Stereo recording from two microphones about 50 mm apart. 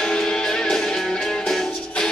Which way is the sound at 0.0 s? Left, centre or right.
Centre.